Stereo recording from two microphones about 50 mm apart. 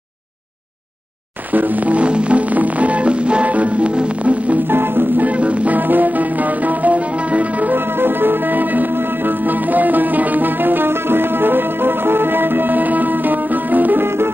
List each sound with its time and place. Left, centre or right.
1.5 s music: right
4.6 s music: right
5.2 s music: right
7.7 s music: right
14.0 s music: right